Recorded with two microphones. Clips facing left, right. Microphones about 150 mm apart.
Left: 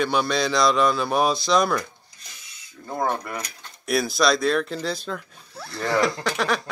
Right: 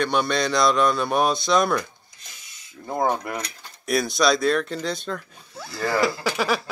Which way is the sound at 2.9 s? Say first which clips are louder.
Right 2 dB; 20° right (ahead or behind).